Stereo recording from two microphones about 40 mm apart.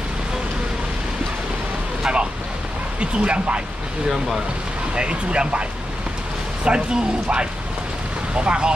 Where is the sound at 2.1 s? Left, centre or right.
Right.